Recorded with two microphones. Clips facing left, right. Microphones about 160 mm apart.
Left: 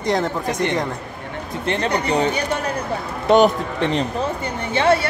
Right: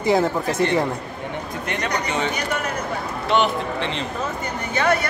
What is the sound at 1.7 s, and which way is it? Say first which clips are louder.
A man's voice: left 5 dB; 30° left (ahead or behind).